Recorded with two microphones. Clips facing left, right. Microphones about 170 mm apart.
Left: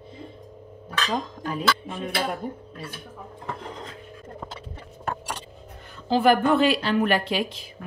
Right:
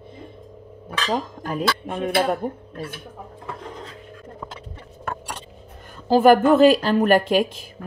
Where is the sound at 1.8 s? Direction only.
60° right (ahead or behind).